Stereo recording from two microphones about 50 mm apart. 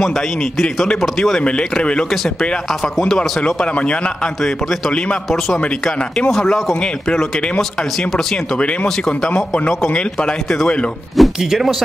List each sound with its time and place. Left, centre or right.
1.0 s speech: centre
1.4 s speech: centre
3.1 s speech: centre
4.4 s speech: centre
4.9 s speech: centre
11.2 s speech: centre